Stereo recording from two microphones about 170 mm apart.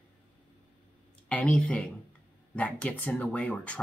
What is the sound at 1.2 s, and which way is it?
Speech, 10° left (ahead or behind).